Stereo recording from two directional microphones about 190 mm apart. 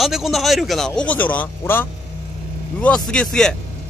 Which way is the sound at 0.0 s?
Centre (ahead or behind).